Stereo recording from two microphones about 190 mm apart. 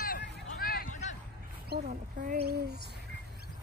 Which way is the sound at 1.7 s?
55° right (ahead or behind).